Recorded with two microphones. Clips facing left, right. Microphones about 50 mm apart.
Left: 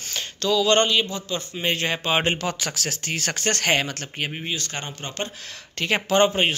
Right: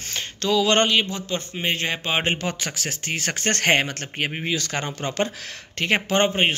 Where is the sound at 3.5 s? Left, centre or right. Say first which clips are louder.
Right 3 dB; right.